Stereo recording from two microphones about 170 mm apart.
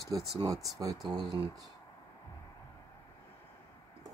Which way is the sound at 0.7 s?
20° right (ahead or behind).